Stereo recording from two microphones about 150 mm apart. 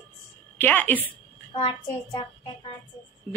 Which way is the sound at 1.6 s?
30° left (ahead or behind).